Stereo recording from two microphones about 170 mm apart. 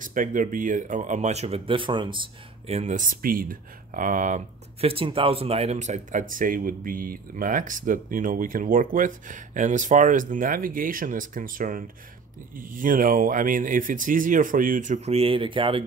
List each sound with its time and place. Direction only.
0.0 s speech: 50° right (ahead or behind); by 2.2 s 30° right (ahead or behind)
2.7 s speech: 45° right (ahead or behind)